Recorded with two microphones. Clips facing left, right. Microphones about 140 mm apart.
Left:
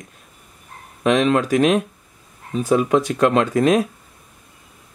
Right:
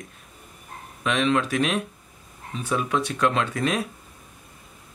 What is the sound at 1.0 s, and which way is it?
Speech, 45° left (ahead or behind).